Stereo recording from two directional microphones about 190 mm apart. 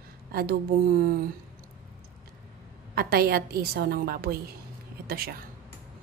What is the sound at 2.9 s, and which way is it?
Speech, 55° right (ahead or behind).